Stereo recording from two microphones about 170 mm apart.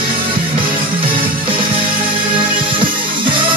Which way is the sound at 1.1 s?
30° right (ahead or behind).